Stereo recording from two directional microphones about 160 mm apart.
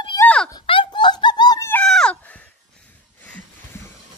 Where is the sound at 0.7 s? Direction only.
30° left (ahead or behind).